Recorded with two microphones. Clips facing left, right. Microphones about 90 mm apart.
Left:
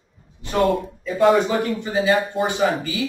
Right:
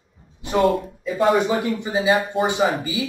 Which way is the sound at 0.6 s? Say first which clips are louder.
Left 1 dB; centre (ahead or behind).